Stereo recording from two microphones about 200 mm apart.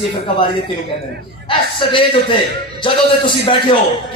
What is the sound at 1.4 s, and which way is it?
A man's voice, 25° left (ahead or behind).